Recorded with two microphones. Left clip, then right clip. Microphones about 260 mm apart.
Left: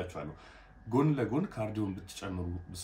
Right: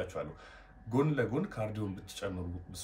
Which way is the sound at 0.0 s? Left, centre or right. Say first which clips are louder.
Right 2 dB; centre.